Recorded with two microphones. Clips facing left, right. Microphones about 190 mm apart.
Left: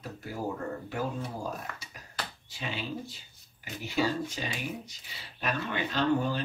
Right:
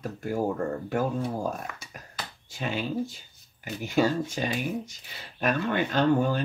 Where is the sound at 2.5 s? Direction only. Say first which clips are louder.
Right 6 dB; 45° right (ahead or behind).